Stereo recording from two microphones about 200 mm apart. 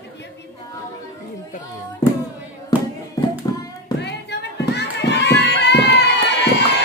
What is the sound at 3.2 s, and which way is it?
Hands, 15° left (ahead or behind).